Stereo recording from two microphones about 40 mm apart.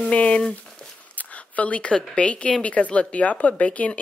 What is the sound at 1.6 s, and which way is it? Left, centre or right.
A woman's voice, left.